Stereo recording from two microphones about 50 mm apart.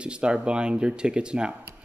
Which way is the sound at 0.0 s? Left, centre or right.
Right.